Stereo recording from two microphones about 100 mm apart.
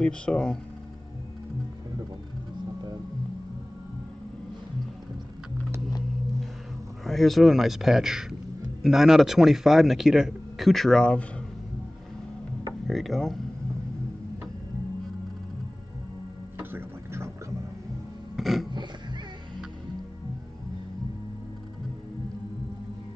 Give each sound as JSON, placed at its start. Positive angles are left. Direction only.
{"t": 0.0, "sound": "speech", "side_deg": 10}
{"t": 7.1, "sound": "a man's voice", "side_deg": 0}
{"t": 12.8, "sound": "a man's voice", "side_deg": 0}
{"t": 16.5, "sound": "music", "side_deg": -25}
{"t": 18.3, "sound": "a sound", "side_deg": 0}